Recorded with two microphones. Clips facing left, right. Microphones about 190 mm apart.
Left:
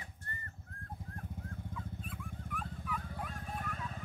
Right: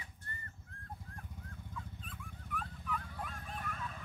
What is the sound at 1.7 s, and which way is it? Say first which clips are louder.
Dog: left 4 dB; 10° left (ahead or behind).